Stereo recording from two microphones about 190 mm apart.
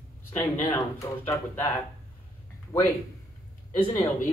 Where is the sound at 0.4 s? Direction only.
15° left (ahead or behind).